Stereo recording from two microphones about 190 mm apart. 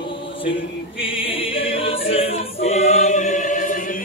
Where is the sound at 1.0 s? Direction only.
30° left (ahead or behind).